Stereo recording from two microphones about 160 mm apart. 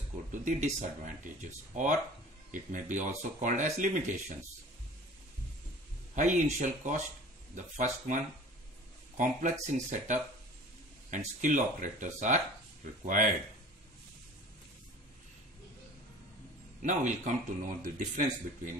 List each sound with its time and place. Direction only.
0.3 s speech: 50° right (ahead or behind)
6.1 s speech: 50° right (ahead or behind)
16.8 s speech: 50° right (ahead or behind)